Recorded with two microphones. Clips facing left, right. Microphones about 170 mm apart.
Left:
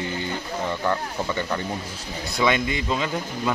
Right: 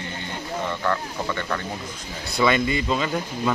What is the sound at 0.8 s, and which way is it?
Speech, 15° left (ahead or behind).